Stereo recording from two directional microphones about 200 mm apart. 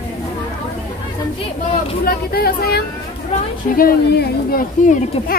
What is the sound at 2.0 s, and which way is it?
Speech, 50° left (ahead or behind).